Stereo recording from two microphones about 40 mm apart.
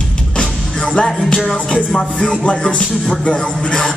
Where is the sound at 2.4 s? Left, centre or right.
Left.